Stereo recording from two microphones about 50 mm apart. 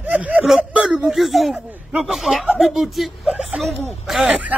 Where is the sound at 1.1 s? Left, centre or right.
Centre.